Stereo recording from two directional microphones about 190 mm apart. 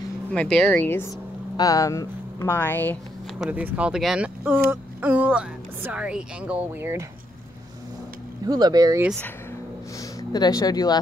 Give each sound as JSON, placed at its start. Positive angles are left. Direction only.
{"t": 0.3, "sound": "speech", "side_deg": 5}
{"t": 3.3, "sound": "a woman's voice", "side_deg": -5}
{"t": 8.5, "sound": "speech", "side_deg": -20}
{"t": 9.9, "sound": "speech", "side_deg": 20}